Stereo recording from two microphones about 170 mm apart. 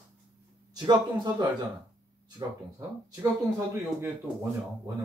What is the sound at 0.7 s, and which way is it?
Speech, 25° right (ahead or behind).